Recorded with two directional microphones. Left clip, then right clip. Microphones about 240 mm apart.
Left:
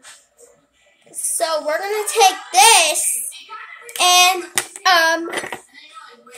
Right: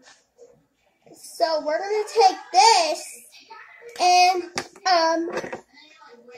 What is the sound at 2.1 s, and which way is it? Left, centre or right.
Child singing, left.